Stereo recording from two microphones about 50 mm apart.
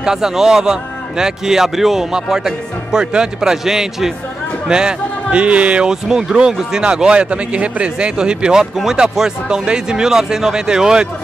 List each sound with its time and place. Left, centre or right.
0.0 s a man's voice: centre
5.9 s a man's voice: centre